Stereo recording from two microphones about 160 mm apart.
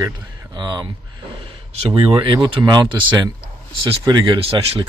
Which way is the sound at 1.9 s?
30° right (ahead or behind).